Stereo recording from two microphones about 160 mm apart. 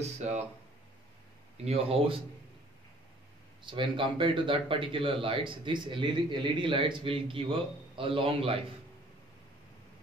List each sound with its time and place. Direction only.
0.0 s speech: 45° right (ahead or behind)
1.6 s speech: 40° right (ahead or behind)
3.6 s speech: 30° right (ahead or behind)